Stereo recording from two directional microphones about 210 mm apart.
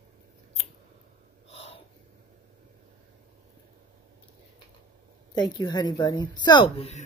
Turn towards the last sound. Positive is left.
turn(degrees=30)  # may be behind; listen again after turning